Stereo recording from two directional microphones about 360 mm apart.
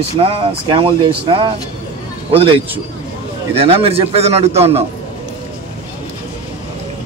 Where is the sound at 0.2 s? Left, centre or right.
Centre.